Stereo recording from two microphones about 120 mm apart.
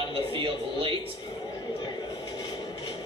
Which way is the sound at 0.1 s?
50° right (ahead or behind).